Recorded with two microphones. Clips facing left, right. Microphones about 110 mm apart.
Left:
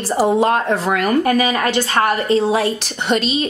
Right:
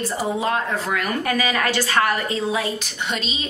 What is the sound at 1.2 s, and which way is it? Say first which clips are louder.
A woman's voice: left 6 dB; 35° left (ahead or behind).